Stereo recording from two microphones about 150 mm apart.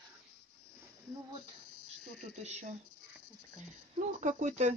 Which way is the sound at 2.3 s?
50° right (ahead or behind).